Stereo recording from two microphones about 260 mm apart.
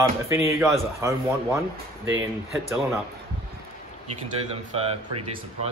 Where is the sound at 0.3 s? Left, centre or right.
Centre.